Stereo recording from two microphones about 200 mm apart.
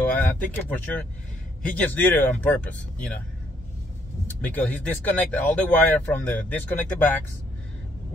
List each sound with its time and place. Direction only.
0.1 s speech: 10° left (ahead or behind)
4.3 s speech: 10° left (ahead or behind)